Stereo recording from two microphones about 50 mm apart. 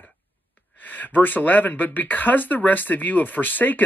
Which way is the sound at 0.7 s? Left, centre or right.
Left.